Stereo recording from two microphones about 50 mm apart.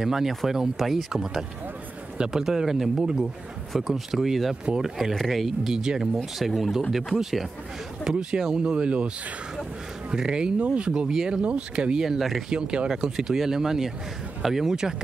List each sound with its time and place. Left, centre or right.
0.0 s speech: centre
6.1 s speech: centre
8.0 s speech: centre
10.1 s speech: centre
10.9 s speech: centre
12.0 s speech: centre
12.4 s speech: centre